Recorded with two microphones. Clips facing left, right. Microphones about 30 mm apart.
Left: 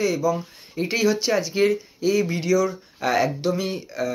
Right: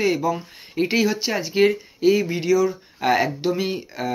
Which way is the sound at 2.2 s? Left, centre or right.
Centre.